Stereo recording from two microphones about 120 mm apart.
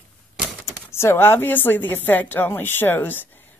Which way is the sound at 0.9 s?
20° left (ahead or behind).